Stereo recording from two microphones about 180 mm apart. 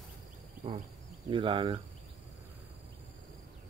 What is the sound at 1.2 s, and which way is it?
Speech, 30° right (ahead or behind).